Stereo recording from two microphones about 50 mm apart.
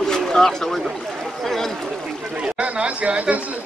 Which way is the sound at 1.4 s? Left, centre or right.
Centre.